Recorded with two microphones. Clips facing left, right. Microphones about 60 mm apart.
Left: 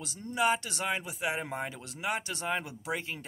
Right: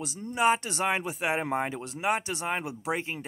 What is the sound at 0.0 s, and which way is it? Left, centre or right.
Speech, right.